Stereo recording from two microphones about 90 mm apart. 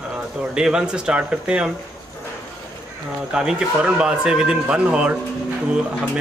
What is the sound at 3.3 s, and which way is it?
Speech, 10° right (ahead or behind).